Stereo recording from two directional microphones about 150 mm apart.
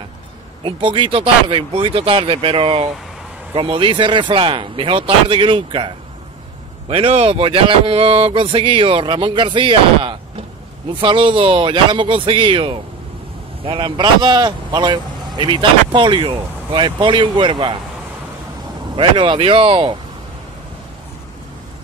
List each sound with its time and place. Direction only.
0.7 s speech: 35° right (ahead or behind)
18.9 s speech: 35° right (ahead or behind)